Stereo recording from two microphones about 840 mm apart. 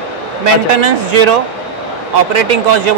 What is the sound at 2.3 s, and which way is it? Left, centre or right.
Speech, right.